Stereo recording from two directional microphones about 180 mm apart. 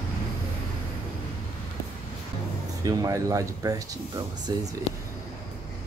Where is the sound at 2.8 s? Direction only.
20° right (ahead or behind).